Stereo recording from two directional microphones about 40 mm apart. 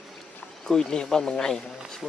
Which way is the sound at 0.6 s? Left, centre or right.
Centre.